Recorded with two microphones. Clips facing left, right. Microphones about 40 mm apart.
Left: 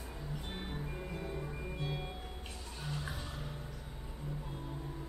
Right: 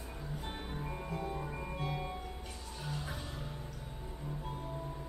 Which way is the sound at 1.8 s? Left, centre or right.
Centre.